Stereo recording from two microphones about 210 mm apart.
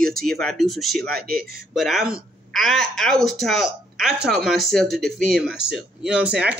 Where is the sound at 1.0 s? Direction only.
45° right (ahead or behind).